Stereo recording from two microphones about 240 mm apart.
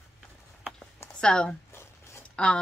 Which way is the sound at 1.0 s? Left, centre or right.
Centre.